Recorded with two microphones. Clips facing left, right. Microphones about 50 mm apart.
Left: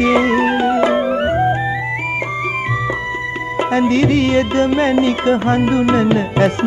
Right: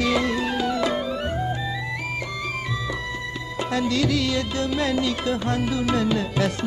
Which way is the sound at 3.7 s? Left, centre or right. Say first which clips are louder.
Left 8 dB; left.